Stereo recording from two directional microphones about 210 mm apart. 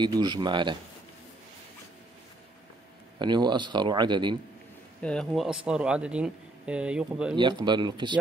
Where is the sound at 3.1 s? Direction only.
20° right (ahead or behind).